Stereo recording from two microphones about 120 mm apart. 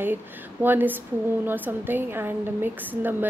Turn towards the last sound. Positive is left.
turn(degrees=-15)  # may be behind; listen again after turning